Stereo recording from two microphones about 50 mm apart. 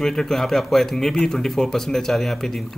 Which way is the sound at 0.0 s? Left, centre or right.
Centre.